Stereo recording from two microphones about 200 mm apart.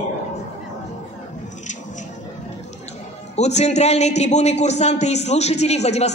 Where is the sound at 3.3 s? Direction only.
35° left (ahead or behind).